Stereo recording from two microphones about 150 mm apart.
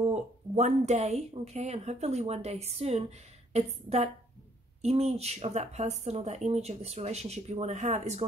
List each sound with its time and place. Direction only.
0.0 s speech: 50° right (ahead or behind)